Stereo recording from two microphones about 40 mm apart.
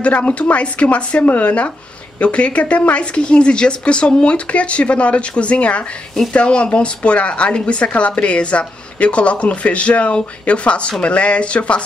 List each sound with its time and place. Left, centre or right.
0.0 s speech: left